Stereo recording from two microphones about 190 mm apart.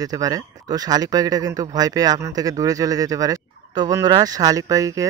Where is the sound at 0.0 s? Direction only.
20° right (ahead or behind).